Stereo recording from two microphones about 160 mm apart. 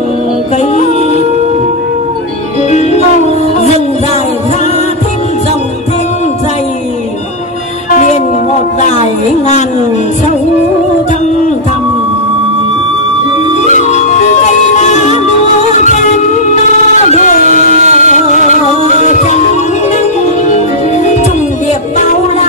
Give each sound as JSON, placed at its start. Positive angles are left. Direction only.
{"t": 7.9, "sound": "music", "side_deg": 50}
{"t": 14.8, "sound": "music", "side_deg": 45}
{"t": 17.1, "sound": "a sound", "side_deg": 50}
{"t": 17.7, "sound": "a sound", "side_deg": -45}
{"t": 18.1, "sound": "music", "side_deg": 50}
{"t": 20.4, "sound": "music", "side_deg": 45}